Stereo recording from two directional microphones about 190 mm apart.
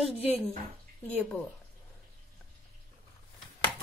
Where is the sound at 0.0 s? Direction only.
30° left (ahead or behind).